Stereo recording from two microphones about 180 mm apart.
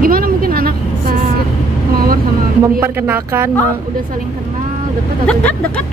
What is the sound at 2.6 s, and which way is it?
Speech, 15° right (ahead or behind).